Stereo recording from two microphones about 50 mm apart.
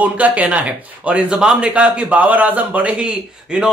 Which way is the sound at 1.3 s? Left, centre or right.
Centre.